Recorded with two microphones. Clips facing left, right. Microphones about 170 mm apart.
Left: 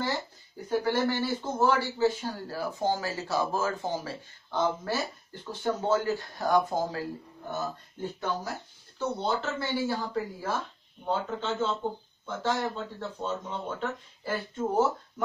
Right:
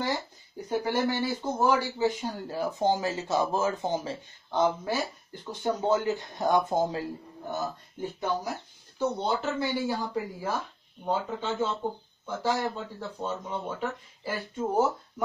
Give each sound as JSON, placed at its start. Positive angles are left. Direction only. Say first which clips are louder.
{"t": 0.7, "sound": "speech", "louder": "left 1 dB", "side_deg": -15}